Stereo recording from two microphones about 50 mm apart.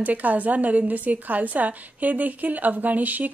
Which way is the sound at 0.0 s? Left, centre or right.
Right.